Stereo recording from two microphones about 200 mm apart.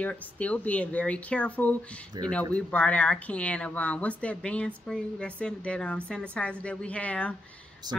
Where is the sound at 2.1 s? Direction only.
20° right (ahead or behind).